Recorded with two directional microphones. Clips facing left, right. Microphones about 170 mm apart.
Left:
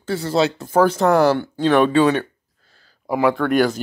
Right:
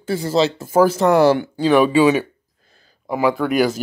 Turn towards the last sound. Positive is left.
turn(degrees=-5)  # may be behind; listen again after turning